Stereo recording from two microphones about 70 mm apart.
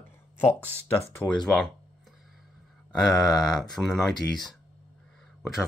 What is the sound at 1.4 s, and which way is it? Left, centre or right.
Speech, centre.